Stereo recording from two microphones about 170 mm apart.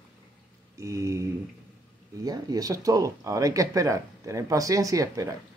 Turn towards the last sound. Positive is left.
turn(degrees=-20)  # may be behind; listen again after turning